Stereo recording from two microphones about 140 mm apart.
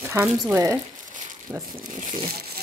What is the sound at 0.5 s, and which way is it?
A woman's voice, 20° right (ahead or behind).